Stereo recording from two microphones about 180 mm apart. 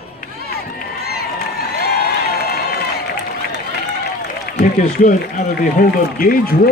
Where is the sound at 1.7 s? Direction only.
60° left (ahead or behind).